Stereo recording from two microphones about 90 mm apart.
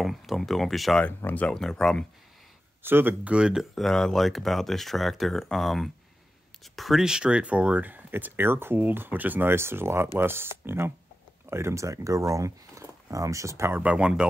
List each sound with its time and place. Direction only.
0.0 s speech: centre (ahead or behind)
1.0 s speech: 15° left (ahead or behind)
1.6 s speech: 5° left (ahead or behind)
2.8 s speech: 25° right (ahead or behind)
3.3 s speech: 10° right (ahead or behind)
3.7 s speech: 5° left (ahead or behind); by 13.7 s 35° right (ahead or behind)
13.7 s speech: 10° right (ahead or behind)